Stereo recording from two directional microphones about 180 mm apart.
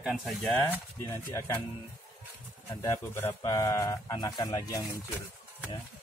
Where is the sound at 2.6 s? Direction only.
15° left (ahead or behind).